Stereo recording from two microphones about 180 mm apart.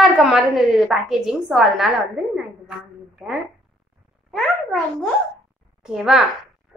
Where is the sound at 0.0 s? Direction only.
Centre (ahead or behind).